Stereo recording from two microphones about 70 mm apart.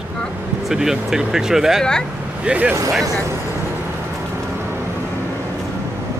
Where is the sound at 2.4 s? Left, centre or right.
Centre.